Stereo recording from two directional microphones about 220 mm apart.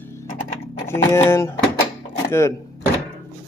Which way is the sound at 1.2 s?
10° left (ahead or behind).